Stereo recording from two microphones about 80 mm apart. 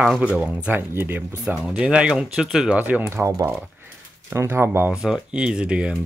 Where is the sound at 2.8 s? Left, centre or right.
Centre.